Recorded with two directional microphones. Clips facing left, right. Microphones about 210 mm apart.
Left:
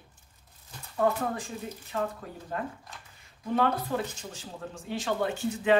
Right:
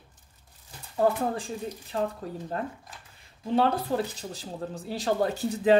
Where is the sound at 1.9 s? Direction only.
30° right (ahead or behind).